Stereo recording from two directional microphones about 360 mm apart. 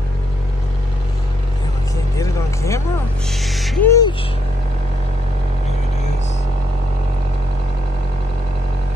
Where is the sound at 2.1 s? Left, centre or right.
Centre.